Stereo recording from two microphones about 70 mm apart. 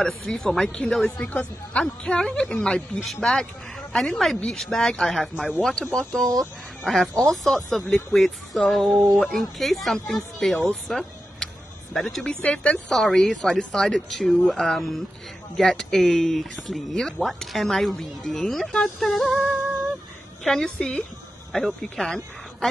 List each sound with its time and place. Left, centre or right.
0.0 s a woman's voice: centre
8.9 s speech: right
9.2 s speech: centre
12.4 s speech: centre
12.9 s a woman's voice: centre
20.4 s a woman's voice: centre